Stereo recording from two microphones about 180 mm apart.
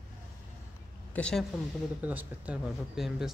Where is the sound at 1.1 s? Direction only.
5° left (ahead or behind).